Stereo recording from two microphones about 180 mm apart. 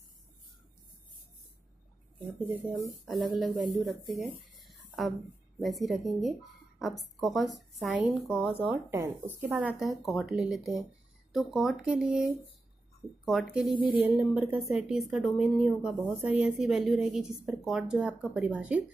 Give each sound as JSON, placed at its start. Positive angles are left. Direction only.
{"t": 2.1, "sound": "speech", "side_deg": -30}
{"t": 3.1, "sound": "a woman's voice", "side_deg": 0}
{"t": 4.6, "sound": "a sound", "side_deg": 0}
{"t": 5.6, "sound": "a woman's voice", "side_deg": 0}